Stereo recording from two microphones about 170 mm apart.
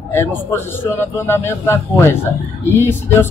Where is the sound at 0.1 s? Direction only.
15° left (ahead or behind).